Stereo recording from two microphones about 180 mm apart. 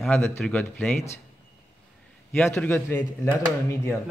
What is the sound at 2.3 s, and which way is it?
Speech, 10° left (ahead or behind).